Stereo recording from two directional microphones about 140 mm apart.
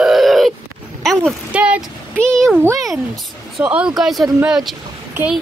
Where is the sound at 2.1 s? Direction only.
5° left (ahead or behind).